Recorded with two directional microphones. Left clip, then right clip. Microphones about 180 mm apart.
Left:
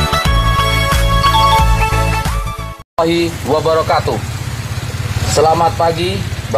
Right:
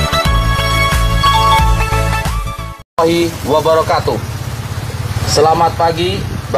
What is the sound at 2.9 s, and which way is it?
Speech, 20° right (ahead or behind).